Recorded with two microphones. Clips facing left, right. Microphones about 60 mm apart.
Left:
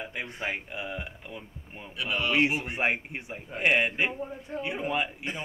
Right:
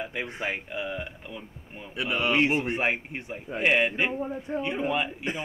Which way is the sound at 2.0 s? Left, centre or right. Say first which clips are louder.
Right 3 dB; right.